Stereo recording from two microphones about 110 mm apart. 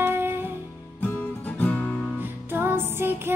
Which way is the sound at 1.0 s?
15° left (ahead or behind).